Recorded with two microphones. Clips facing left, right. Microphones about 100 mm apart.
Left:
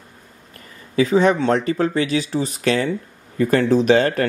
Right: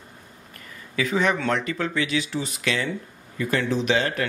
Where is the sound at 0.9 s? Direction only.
35° left (ahead or behind).